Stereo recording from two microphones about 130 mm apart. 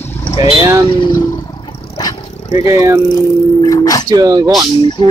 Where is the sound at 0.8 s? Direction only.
35° left (ahead or behind).